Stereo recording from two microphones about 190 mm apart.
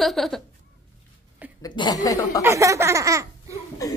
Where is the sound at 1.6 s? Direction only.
20° left (ahead or behind).